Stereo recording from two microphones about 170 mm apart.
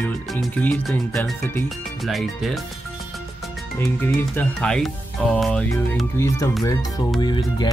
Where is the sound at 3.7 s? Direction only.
15° left (ahead or behind).